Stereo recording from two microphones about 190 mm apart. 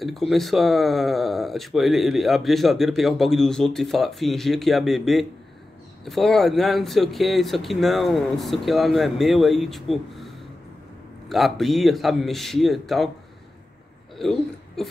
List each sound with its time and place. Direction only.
0.0 s speech: centre (ahead or behind)
14.1 s speech: centre (ahead or behind)